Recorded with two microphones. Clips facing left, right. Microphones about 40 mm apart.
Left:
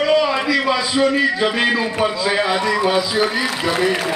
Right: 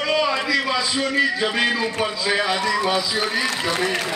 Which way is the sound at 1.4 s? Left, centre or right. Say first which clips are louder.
Left 3 dB; centre.